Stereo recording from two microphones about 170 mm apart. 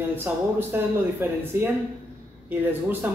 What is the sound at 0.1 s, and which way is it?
Speech, 10° right (ahead or behind).